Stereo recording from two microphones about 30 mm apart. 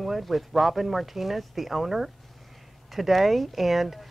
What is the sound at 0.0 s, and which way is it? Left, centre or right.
Speech, centre.